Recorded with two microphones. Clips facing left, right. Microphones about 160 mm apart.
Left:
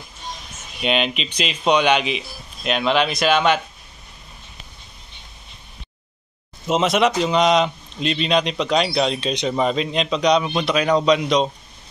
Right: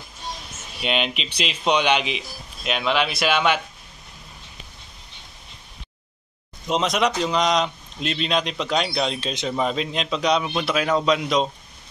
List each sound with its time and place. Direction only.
0.8 s a man's voice: centre (ahead or behind)
1.6 s a man's voice: 10° left (ahead or behind)
2.6 s speech: centre (ahead or behind)
6.7 s a man's voice: 5° left (ahead or behind)